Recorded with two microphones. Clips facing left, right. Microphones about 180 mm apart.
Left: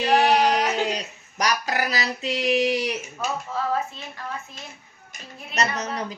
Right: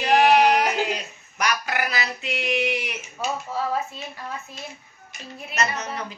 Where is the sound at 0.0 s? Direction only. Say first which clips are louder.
Right 2 dB; 35° left (ahead or behind).